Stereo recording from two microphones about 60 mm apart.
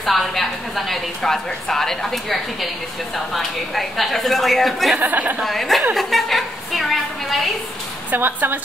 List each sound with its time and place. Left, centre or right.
0.0 s a woman's voice: centre
4.9 s speech: right
5.4 s a woman's voice: centre
5.9 s a sound: centre
8.1 s a woman's voice: right